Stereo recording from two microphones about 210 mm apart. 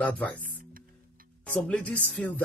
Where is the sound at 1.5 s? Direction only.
5° left (ahead or behind).